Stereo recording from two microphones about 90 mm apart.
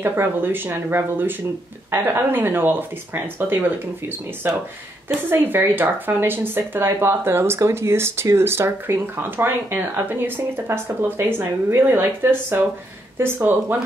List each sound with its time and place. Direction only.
0.0 s speech: 25° right (ahead or behind)